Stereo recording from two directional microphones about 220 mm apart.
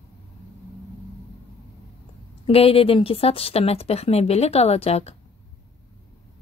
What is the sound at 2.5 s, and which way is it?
A woman's voice, 25° left (ahead or behind).